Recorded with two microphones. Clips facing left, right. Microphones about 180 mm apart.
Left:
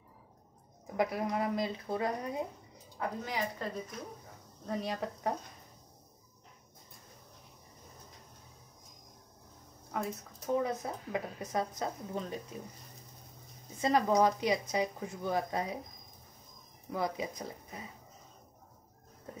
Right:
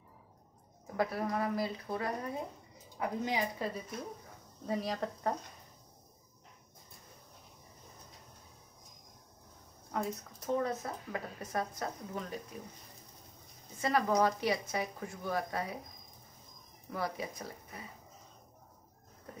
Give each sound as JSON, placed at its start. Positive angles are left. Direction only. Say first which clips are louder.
{"t": 0.9, "sound": "speech", "louder": "left 1 dB", "side_deg": 15}
{"t": 3.0, "sound": "a woman's voice", "louder": "right 2 dB", "side_deg": -15}
{"t": 9.9, "sound": "speech", "louder": "right 1 dB", "side_deg": 0}
{"t": 10.6, "sound": "speech", "louder": "left 1 dB", "side_deg": 15}
{"t": 13.7, "sound": "speech", "louder": "left 2 dB", "side_deg": 20}
{"t": 16.9, "sound": "speech", "louder": "left 3 dB", "side_deg": 20}